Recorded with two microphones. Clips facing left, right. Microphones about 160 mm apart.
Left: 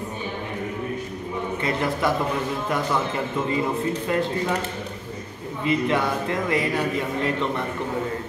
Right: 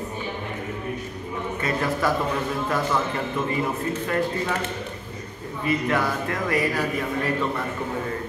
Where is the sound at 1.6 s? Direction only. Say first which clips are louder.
Even; 20° left (ahead or behind).